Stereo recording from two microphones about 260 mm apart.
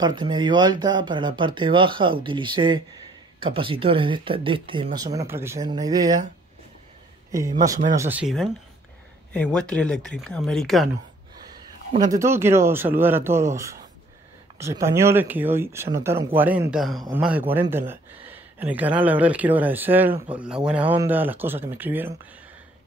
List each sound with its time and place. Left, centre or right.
0.0 s speech: centre
7.2 s speech: centre
11.9 s speech: centre